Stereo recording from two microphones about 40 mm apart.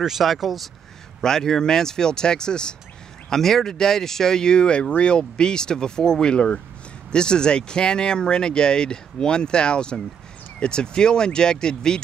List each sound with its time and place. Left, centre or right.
0.0 s speech: centre
1.2 s speech: centre